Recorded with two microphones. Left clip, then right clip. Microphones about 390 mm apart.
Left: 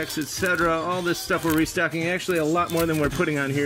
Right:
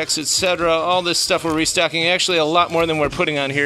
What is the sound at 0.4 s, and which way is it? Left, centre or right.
Speech, centre.